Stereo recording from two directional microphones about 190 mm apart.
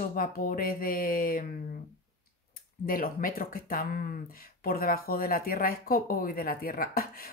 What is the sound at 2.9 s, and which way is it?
Speech, 50° left (ahead or behind).